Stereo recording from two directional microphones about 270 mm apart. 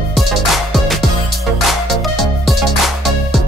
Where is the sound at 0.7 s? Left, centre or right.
Centre.